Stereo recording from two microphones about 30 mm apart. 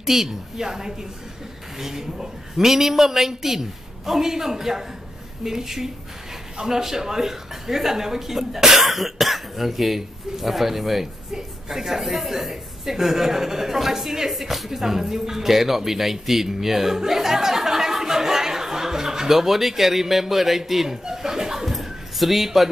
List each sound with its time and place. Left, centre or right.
0.0 s a woman's voice: centre
21.1 s chuckle: centre
21.6 s a sound: centre